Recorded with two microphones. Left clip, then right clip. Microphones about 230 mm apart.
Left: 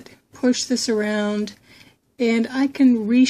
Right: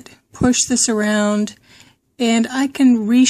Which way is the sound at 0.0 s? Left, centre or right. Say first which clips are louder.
Right 3 dB; right.